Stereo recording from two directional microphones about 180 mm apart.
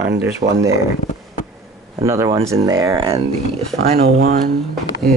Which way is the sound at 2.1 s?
15° right (ahead or behind).